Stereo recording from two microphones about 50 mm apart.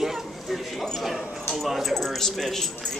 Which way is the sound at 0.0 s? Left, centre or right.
Centre.